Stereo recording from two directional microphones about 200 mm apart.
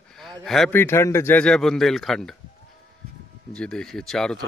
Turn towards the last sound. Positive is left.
turn(degrees=0)  # may be behind; listen again after turning